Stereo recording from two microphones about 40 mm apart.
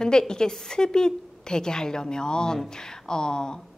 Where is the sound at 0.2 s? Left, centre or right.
Centre.